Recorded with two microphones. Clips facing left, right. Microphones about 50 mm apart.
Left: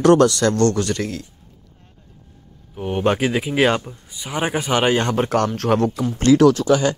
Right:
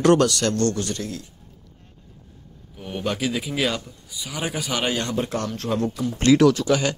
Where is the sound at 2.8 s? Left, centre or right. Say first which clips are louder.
Left 8 dB; left.